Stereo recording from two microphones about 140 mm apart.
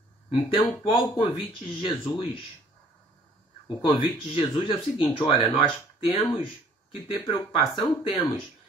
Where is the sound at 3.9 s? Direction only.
40° left (ahead or behind).